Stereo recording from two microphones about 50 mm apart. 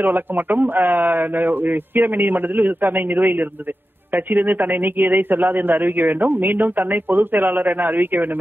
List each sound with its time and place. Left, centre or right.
0.0 s a man's voice: right